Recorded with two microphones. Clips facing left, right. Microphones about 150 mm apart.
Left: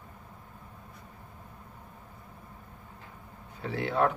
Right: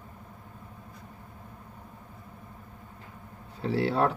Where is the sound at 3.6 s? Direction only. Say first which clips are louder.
Right 2 dB; 35° right (ahead or behind).